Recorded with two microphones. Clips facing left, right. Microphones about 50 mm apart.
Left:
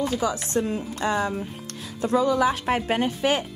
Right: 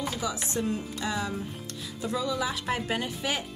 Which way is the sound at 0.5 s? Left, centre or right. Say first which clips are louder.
Left 5 dB; left.